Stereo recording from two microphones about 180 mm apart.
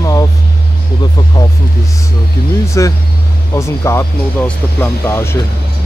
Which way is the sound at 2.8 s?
15° left (ahead or behind).